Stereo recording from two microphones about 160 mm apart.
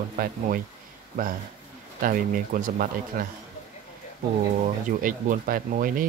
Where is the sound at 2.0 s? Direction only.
60° right (ahead or behind).